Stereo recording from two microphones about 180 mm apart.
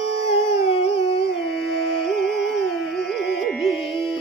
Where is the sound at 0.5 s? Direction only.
30° left (ahead or behind).